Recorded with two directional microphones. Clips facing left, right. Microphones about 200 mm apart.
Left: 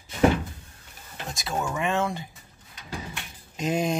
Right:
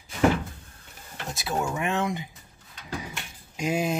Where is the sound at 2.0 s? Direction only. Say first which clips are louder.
Left 1 dB; 15° right (ahead or behind).